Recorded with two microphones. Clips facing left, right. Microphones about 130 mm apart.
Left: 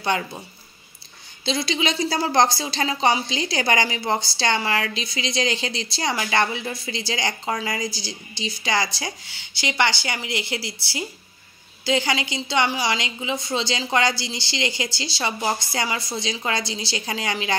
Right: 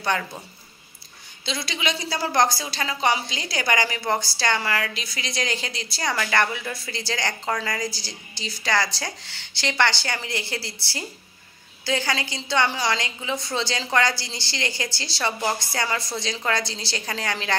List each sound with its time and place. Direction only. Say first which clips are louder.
1.4 s a woman's voice: left 5 dB; 25° left (ahead or behind)